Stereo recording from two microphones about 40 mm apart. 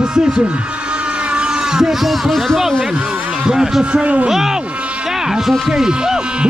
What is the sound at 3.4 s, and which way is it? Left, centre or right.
Speech, centre.